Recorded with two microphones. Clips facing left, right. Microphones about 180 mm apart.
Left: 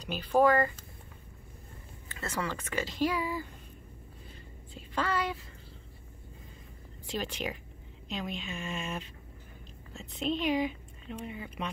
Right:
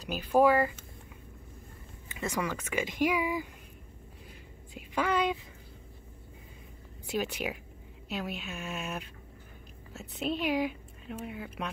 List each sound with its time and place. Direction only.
0.0 s speech: 5° right (ahead or behind)
2.0 s speech: 15° right (ahead or behind)
4.7 s a woman's voice: 15° right (ahead or behind)
7.1 s speech: 10° right (ahead or behind)